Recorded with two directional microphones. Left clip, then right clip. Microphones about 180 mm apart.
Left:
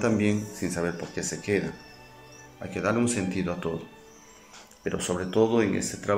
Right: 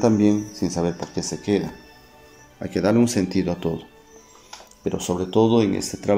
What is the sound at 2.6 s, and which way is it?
Speech, 40° right (ahead or behind).